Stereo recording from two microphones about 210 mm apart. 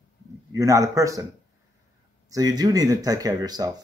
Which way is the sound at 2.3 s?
20° right (ahead or behind).